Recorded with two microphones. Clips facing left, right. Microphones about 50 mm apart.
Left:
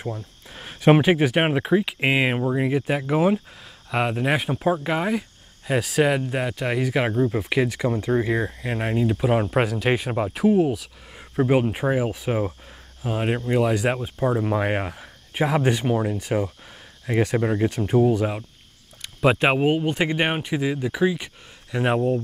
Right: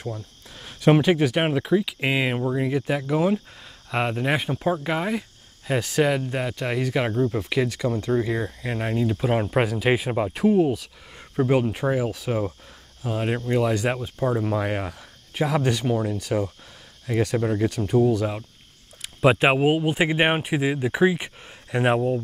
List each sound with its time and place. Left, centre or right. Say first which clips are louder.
0.0 s speech: left 2 dB; left
3.9 s speech: left 1 dB; centre
9.3 s speech: left 1 dB; centre
11.3 s speech: left 1 dB; centre
18.9 s speech: right 1 dB; centre
21.9 s speech: left 1 dB; centre